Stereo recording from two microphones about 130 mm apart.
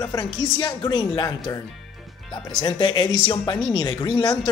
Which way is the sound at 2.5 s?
35° left (ahead or behind).